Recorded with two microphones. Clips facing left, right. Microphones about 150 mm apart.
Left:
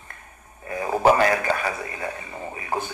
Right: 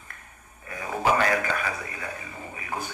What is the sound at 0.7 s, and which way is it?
A man's voice, 40° left (ahead or behind).